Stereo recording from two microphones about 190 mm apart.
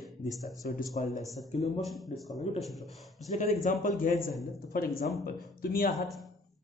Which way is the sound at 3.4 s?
40° left (ahead or behind).